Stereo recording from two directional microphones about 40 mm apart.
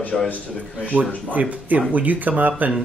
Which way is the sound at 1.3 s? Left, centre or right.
Right.